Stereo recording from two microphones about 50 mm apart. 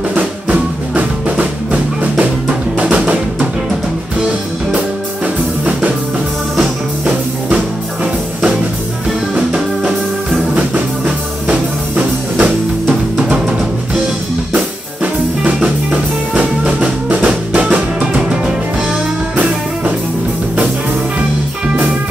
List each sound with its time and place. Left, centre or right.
0.1 s music: right
4.7 s music: right
7.1 s music: right
10.7 s music: right
15.6 s music: right